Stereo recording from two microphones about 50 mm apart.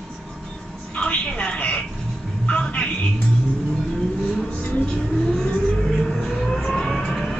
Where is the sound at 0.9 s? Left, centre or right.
Centre.